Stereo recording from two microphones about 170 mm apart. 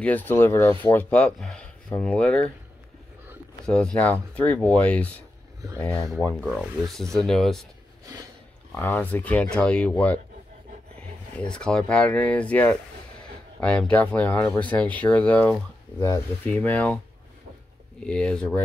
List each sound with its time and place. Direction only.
0.0 s speech: 10° left (ahead or behind)
3.6 s speech: 5° left (ahead or behind)
8.0 s a sound: 20° right (ahead or behind)
8.7 s speech: 10° left (ahead or behind)
11.5 s speech: 5° left (ahead or behind)
18.0 s speech: 5° left (ahead or behind)